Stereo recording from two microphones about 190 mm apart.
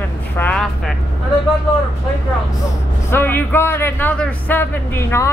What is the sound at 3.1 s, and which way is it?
A man's voice, 10° left (ahead or behind).